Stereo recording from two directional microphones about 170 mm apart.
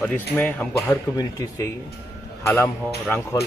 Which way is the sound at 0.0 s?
10° left (ahead or behind).